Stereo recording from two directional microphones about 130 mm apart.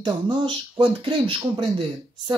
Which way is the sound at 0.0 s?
35° right (ahead or behind).